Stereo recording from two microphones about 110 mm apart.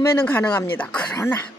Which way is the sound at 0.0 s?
20° left (ahead or behind).